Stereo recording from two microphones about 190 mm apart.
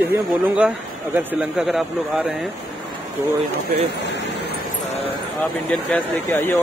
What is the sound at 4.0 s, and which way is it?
Air conditioning, 60° left (ahead or behind).